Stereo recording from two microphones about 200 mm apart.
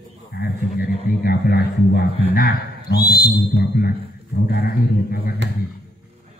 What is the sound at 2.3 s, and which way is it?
Speech, 50° left (ahead or behind).